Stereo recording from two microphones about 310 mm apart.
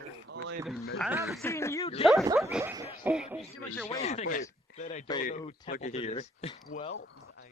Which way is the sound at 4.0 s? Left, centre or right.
Left.